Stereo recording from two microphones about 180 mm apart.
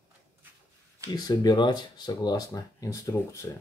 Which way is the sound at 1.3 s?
25° left (ahead or behind).